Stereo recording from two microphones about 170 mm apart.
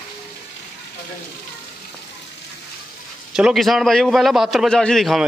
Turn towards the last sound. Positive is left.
turn(degrees=0)  # may be behind; listen again after turning